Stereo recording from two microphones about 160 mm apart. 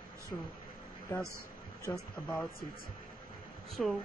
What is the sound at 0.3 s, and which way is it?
Speech, 10° left (ahead or behind).